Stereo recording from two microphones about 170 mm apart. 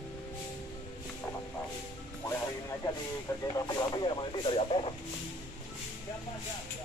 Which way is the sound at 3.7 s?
25° left (ahead or behind).